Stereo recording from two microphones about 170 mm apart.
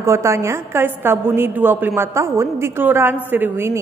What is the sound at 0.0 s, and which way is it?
A woman's voice, 15° right (ahead or behind).